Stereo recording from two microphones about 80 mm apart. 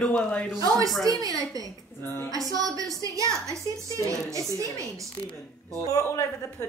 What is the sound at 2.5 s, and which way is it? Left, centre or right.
A woman's voice, right.